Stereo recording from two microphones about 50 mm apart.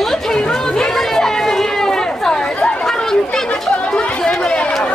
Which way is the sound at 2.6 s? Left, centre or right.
Left.